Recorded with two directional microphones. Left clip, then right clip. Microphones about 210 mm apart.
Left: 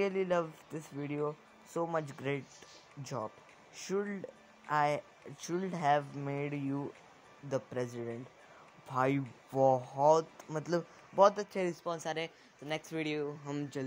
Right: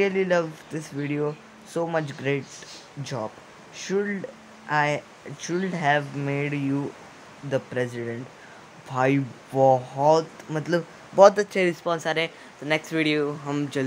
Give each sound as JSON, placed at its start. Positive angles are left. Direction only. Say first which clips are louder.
{"t": 0.0, "sound": "speech", "louder": "right 10 dB", "side_deg": 15}
{"t": 11.1, "sound": "speech", "louder": "right 11 dB", "side_deg": -5}